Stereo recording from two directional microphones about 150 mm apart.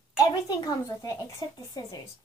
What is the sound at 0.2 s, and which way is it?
A woman's voice, 25° left (ahead or behind).